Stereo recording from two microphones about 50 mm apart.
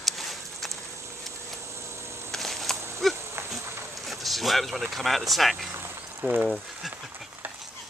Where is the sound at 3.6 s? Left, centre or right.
Right.